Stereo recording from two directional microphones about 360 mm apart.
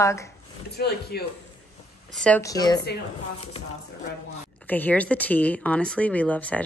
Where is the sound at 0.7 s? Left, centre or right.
Left.